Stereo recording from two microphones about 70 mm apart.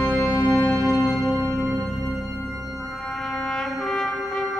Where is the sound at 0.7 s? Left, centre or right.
Right.